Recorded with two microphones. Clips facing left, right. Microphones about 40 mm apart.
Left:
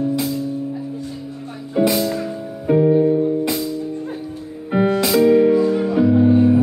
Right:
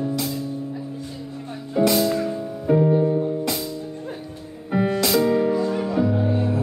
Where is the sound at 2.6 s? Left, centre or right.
Centre.